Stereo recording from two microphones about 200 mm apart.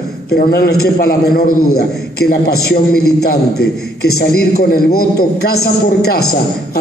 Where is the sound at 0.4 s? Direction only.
50° left (ahead or behind).